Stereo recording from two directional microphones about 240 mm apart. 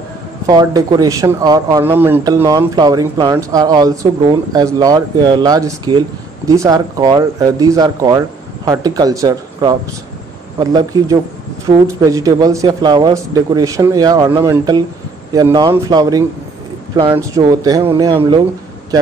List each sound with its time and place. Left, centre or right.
0.5 s speech: centre
17.4 s speech: centre